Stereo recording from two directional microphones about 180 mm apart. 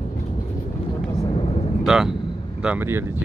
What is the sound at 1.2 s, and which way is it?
Vehicle, 30° left (ahead or behind).